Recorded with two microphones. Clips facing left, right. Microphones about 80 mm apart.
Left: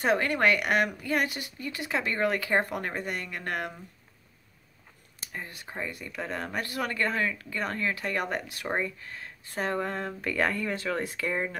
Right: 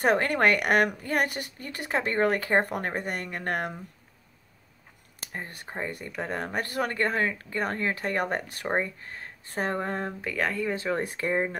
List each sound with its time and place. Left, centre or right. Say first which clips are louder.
0.0 s a woman's voice: right 2 dB; right
5.3 s speech: right 2 dB; right
10.2 s speech: left 3 dB; centre
10.6 s speech: right 2 dB; right